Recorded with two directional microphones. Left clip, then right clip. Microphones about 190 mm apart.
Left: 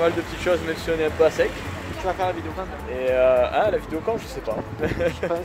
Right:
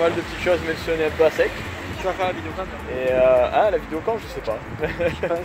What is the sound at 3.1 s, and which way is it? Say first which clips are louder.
Speech: right 2 dB; 20° right (ahead or behind).